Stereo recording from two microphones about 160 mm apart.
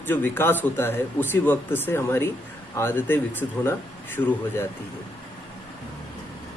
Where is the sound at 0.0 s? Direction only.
10° left (ahead or behind).